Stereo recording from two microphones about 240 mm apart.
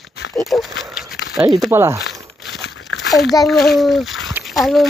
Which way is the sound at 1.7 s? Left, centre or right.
Centre.